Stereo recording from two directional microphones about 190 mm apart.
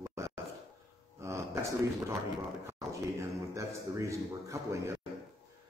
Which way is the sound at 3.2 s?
15° right (ahead or behind).